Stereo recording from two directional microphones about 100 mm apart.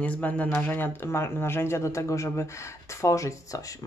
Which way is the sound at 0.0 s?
15° left (ahead or behind).